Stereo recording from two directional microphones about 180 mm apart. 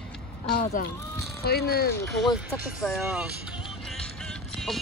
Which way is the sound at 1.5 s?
60° left (ahead or behind).